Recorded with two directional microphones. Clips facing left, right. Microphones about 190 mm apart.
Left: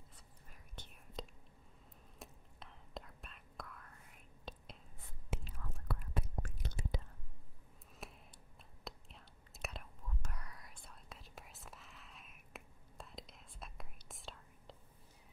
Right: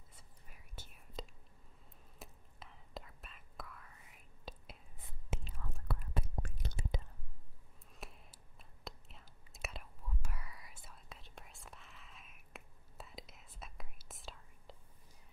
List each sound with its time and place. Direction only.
0.1 s whispering: 5° right (ahead or behind)
5.3 s whispering: 25° right (ahead or behind)
8.0 s a sound: centre (ahead or behind)
8.8 s whispering: centre (ahead or behind)